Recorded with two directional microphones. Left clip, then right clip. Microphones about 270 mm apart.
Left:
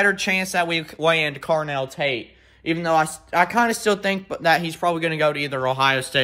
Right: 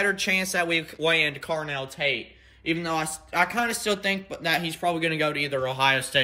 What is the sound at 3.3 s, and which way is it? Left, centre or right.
Speech, left.